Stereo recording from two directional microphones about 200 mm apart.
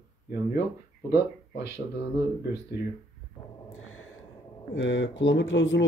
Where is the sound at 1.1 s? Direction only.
60° left (ahead or behind).